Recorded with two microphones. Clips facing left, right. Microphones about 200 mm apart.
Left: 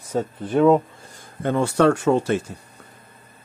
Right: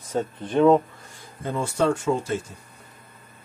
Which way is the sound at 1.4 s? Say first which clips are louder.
Left 6 dB; 70° left (ahead or behind).